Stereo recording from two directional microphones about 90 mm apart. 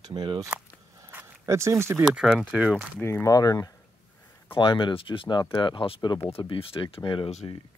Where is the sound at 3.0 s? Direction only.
30° left (ahead or behind).